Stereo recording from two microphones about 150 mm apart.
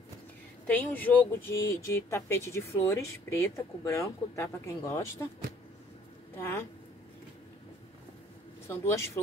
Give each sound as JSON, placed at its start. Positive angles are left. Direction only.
{"t": 0.7, "sound": "speech", "side_deg": 10}
{"t": 6.3, "sound": "a woman's voice", "side_deg": 15}
{"t": 8.6, "sound": "speech", "side_deg": 15}